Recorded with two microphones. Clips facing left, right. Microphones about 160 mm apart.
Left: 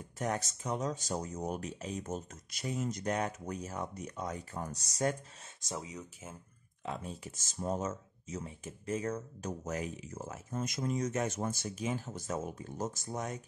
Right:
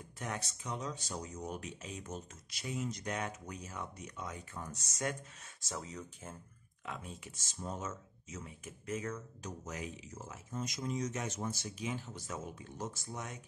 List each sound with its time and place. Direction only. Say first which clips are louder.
0.2 s speech: left 7 dB; 40° left (ahead or behind)
5.6 s speech: left 2 dB; 15° left (ahead or behind)
6.9 s speech: left 5 dB; 35° left (ahead or behind)